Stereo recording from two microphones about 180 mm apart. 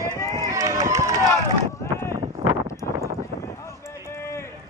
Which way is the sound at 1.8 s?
15° left (ahead or behind).